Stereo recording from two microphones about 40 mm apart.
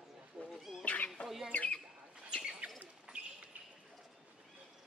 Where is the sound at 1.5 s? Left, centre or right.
Left.